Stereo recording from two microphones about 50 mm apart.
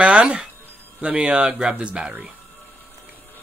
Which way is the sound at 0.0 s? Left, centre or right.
Right.